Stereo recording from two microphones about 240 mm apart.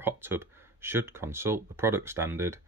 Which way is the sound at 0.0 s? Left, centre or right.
Centre.